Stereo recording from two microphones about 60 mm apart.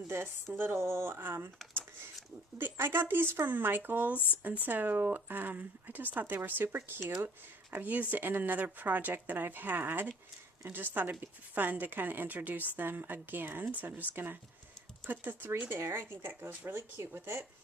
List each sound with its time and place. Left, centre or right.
0.1 s speech: right
2.6 s speech: right
15.8 s speech: right